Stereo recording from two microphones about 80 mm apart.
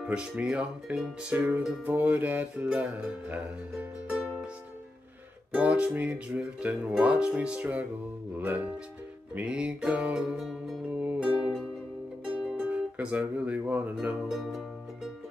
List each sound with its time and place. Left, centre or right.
0.0 s music: centre
5.5 s music: centre
11.0 s music: centre
14.3 s music: centre